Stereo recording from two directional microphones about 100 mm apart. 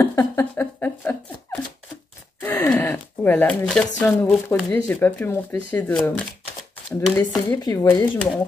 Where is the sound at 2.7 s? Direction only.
20° left (ahead or behind).